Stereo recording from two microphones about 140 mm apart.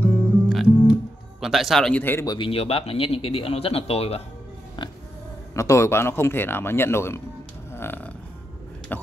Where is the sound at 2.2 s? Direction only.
30° left (ahead or behind).